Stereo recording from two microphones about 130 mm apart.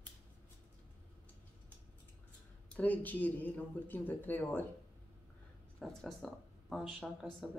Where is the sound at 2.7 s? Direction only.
15° left (ahead or behind).